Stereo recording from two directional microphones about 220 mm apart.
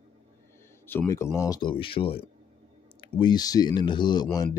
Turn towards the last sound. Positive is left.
turn(degrees=20)  # may be behind; listen again after turning